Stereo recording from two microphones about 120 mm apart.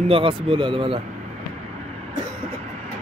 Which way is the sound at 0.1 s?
45° right (ahead or behind).